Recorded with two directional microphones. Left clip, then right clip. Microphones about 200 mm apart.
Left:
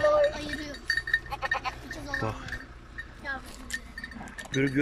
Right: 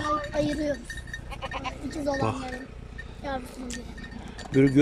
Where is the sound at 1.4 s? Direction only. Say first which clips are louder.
Left 4 dB; 15° right (ahead or behind).